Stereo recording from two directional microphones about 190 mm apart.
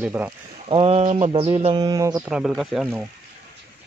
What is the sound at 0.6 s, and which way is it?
Speech, 30° right (ahead or behind).